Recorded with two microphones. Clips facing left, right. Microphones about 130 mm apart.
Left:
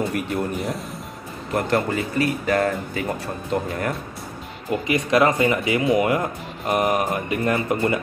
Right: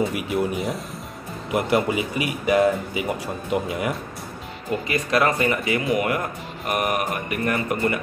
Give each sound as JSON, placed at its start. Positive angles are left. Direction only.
{"t": 0.1, "sound": "speech", "side_deg": -5}
{"t": 4.8, "sound": "speech", "side_deg": 20}